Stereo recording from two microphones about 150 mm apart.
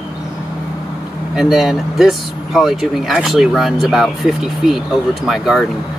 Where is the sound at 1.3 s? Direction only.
Centre (ahead or behind).